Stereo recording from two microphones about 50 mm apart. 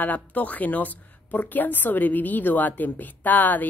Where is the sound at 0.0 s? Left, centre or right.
Left.